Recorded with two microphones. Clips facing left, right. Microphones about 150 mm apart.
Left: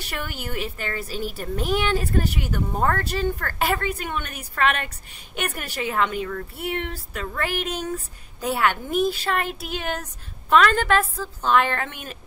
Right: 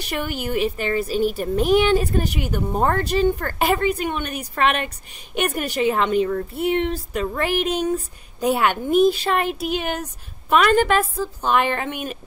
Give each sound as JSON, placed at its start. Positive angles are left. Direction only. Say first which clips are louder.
{"t": 0.0, "sound": "a woman's voice", "louder": "right 6 dB", "side_deg": -20}